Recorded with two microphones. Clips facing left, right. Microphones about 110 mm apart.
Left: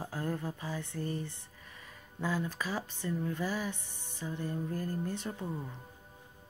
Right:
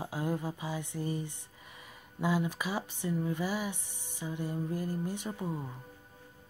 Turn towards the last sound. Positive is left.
turn(degrees=-15)  # may be behind; listen again after turning